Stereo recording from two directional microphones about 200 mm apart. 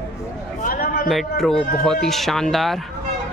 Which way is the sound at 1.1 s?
Centre (ahead or behind).